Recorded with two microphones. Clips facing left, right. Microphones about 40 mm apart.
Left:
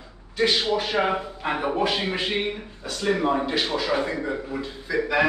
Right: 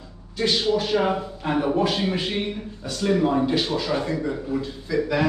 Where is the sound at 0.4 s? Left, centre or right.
Left.